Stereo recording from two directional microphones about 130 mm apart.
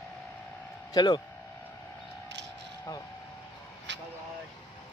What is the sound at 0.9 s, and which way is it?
Speech, 35° left (ahead or behind).